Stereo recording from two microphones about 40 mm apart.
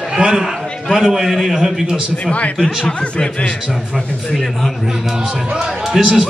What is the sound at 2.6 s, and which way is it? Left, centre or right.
Speech, left.